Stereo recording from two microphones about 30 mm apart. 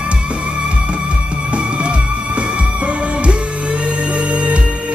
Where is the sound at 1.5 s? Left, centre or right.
Right.